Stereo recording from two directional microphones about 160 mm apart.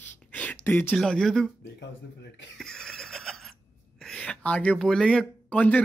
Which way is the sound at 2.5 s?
5° left (ahead or behind).